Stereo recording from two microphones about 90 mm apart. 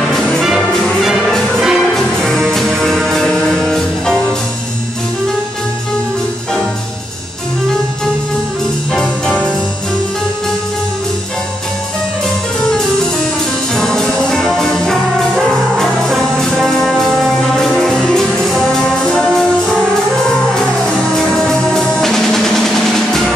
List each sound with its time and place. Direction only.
0.4 s music: centre (ahead or behind)
8.9 s music: 10° left (ahead or behind)
13.7 s music: 5° left (ahead or behind)
20.8 s music: 5° left (ahead or behind)